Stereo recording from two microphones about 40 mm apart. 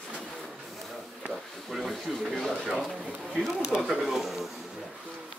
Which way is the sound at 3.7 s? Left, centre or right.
Centre.